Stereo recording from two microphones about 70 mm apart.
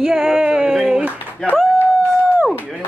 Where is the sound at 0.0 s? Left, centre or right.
Centre.